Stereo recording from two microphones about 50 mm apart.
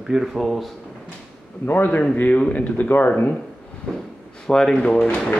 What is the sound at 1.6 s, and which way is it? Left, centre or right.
A man's voice, left.